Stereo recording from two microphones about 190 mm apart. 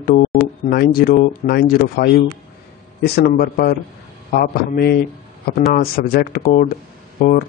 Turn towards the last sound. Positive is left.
turn(degrees=45)  # may be behind; listen again after turning